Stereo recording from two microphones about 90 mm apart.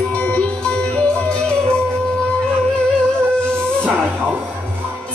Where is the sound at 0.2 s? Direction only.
10° left (ahead or behind).